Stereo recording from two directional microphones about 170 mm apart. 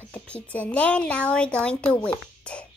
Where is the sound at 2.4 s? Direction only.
5° left (ahead or behind).